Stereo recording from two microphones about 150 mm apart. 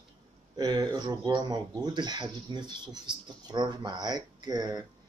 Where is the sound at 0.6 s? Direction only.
25° right (ahead or behind).